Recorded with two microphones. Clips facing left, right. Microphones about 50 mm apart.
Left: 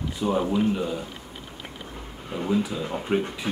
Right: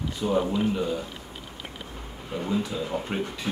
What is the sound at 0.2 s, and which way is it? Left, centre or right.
Speech, centre.